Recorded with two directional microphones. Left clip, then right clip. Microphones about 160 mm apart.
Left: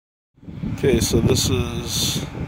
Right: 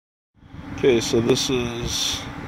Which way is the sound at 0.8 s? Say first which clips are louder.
Right 1 dB; 10° left (ahead or behind).